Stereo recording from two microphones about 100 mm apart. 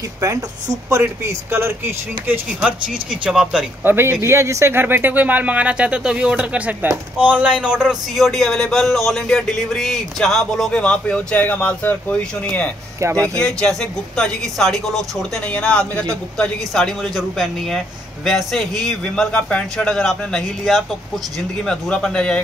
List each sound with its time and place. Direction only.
0.2 s speech: 35° right (ahead or behind)
2.6 s speech: 10° right (ahead or behind)
3.8 s speech: 20° right (ahead or behind); by 12.7 s 15° left (ahead or behind)
13.0 s speech: 30° right (ahead or behind)
13.4 s speech: 5° left (ahead or behind)